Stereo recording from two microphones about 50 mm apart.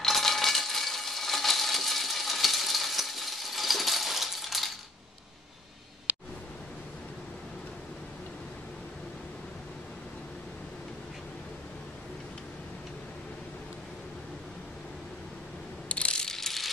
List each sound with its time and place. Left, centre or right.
0.0 s coin: centre
15.9 s ratchet: left
16.3 s ratchet: centre